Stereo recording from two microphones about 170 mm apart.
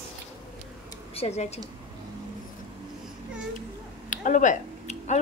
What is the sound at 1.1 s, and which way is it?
Speech, 40° left (ahead or behind).